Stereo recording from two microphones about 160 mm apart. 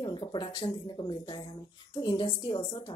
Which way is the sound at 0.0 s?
30° left (ahead or behind).